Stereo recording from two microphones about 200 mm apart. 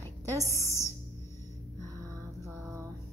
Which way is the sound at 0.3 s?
15° left (ahead or behind).